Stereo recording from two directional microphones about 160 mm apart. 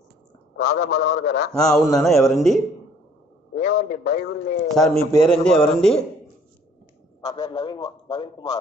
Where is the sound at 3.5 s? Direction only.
65° left (ahead or behind).